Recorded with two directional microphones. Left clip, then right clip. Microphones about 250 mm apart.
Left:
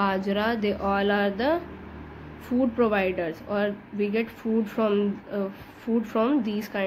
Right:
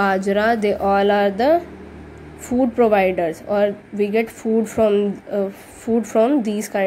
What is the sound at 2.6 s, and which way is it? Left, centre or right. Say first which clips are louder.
A woman's voice: right 8 dB; centre.